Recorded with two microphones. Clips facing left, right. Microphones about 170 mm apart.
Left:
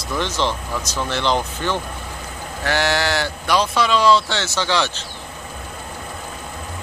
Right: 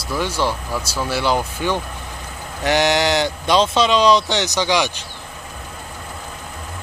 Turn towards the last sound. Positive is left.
turn(degrees=-15)  # may be behind; listen again after turning